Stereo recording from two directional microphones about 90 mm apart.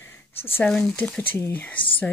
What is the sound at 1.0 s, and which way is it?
Speech, 20° left (ahead or behind).